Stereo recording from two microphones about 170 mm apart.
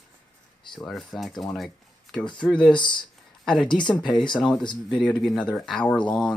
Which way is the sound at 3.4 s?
5° left (ahead or behind).